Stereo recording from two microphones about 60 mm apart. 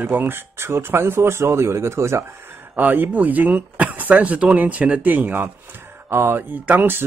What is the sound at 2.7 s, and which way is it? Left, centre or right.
Speech, right.